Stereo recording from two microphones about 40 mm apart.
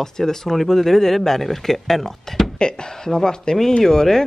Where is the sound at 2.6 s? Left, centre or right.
Centre.